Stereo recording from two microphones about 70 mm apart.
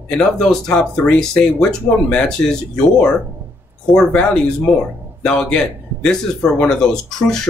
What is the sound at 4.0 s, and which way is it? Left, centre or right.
Speech, centre.